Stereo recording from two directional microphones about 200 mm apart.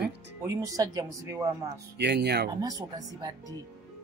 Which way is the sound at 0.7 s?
15° right (ahead or behind).